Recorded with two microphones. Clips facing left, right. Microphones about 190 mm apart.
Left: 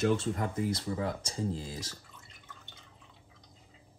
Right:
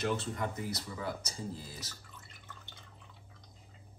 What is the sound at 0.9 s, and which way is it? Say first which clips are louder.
Speech: left 6 dB; 85° left.